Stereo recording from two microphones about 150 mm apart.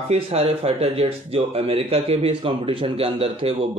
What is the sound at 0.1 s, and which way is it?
Speech, 45° right (ahead or behind).